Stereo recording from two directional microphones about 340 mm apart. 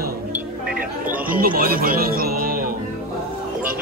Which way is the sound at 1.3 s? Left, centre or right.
Right.